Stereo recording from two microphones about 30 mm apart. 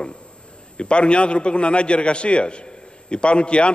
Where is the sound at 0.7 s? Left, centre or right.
Left.